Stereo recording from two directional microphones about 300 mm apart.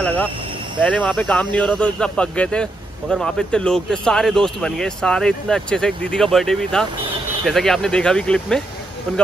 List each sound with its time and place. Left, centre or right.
0.0 s speech: centre